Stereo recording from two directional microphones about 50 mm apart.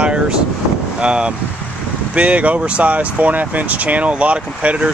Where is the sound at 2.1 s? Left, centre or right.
Right.